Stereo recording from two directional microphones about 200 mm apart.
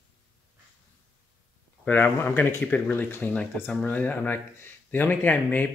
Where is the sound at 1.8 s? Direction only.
10° left (ahead or behind).